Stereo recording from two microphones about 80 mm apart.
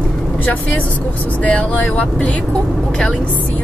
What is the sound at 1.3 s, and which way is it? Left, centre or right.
A woman's voice, centre.